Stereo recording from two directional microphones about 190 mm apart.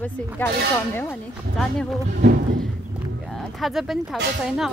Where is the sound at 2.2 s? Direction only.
55° right (ahead or behind).